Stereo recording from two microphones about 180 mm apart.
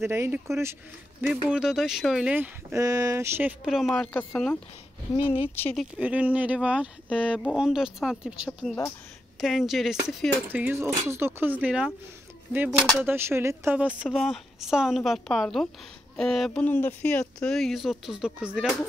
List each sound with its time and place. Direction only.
0.0 s speech: 15° right (ahead or behind)
3.9 s a woman's voice: 10° left (ahead or behind)
5.1 s speech: 30° left (ahead or behind)
5.6 s speech: 5° left (ahead or behind)
5.9 s a woman's voice: 5° right (ahead or behind)